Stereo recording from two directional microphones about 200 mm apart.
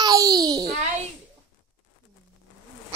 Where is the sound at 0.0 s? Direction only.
20° right (ahead or behind).